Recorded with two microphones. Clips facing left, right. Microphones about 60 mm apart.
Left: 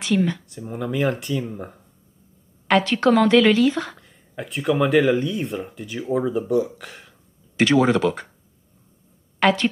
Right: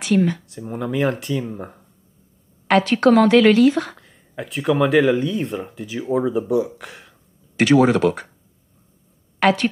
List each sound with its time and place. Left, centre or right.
0.5 s speech: centre
2.8 s a woman's voice: centre
9.4 s a woman's voice: centre